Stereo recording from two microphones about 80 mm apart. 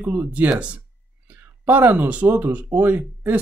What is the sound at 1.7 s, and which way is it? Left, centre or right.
Speech, right.